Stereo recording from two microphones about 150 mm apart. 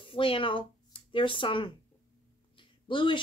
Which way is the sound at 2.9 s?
35° left (ahead or behind).